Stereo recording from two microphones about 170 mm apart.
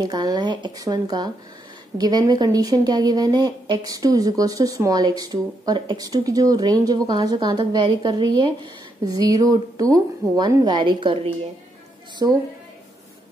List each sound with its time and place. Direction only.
0.0 s speech: 25° right (ahead or behind)
12.2 s speech: 25° right (ahead or behind)